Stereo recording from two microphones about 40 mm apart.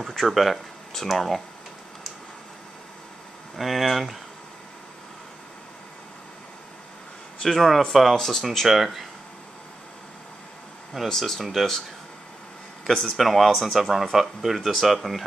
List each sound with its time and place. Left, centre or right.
0.3 s speech: centre
3.5 s speech: centre
7.4 s speech: centre
11.1 s speech: centre
12.8 s speech: centre
13.2 s speech: centre
13.5 s speech: centre
13.7 s speech: centre